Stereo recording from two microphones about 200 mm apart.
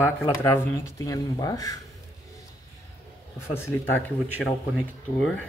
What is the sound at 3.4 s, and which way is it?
Speech, 10° left (ahead or behind).